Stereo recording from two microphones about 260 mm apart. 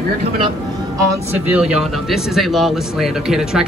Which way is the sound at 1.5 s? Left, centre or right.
Centre.